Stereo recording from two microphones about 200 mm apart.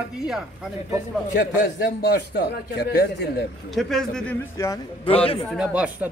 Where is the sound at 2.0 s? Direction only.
55° left (ahead or behind).